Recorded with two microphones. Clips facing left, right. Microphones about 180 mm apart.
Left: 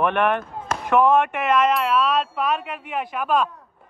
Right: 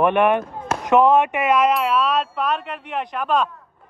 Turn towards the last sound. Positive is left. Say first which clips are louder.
# right 1 dB
turn(degrees=5)  # may be behind; listen again after turning